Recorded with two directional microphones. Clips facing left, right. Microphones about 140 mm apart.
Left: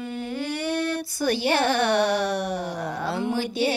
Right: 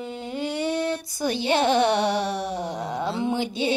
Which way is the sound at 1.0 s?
20° right (ahead or behind).